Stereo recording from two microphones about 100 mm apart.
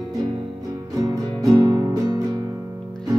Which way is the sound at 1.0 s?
40° right (ahead or behind).